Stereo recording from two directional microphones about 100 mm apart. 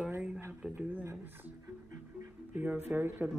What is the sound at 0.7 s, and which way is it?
Speech, 20° right (ahead or behind).